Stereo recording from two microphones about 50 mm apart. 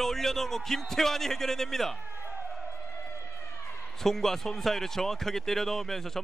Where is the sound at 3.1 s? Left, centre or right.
Left.